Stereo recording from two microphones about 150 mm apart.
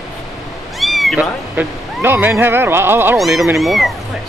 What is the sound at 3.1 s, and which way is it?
Speech, centre (ahead or behind).